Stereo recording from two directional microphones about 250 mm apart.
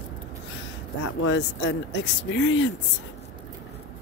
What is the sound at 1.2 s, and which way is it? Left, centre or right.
Speech, left.